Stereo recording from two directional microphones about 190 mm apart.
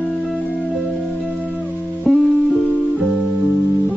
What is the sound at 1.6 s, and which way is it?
Music, 5° left (ahead or behind).